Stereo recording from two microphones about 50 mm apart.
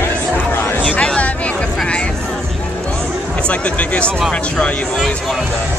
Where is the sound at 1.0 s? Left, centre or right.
Left.